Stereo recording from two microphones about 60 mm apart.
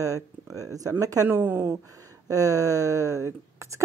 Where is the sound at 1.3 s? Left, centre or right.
Right.